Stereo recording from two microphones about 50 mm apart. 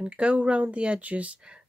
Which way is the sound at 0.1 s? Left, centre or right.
Right.